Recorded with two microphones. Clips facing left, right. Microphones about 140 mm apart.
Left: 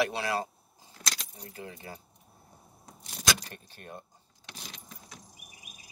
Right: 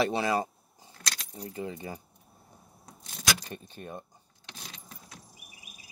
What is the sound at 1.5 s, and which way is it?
Speech, 20° right (ahead or behind).